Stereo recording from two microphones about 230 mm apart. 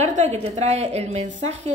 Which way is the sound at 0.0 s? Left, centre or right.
Right.